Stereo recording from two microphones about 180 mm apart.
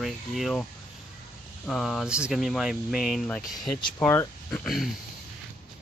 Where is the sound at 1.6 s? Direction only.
Centre (ahead or behind).